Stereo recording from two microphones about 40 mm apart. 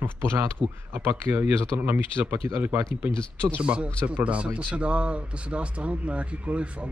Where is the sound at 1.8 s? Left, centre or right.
Right.